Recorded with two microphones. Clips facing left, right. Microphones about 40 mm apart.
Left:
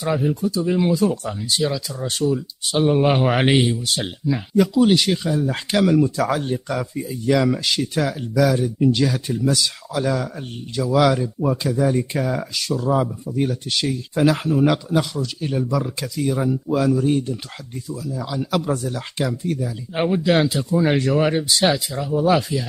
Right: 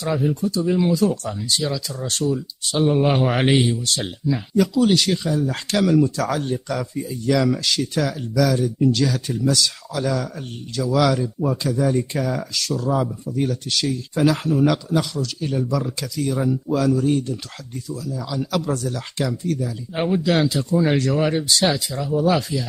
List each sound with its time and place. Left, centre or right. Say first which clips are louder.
0.2 s speech: even; centre
1.5 s speech: left 2 dB; centre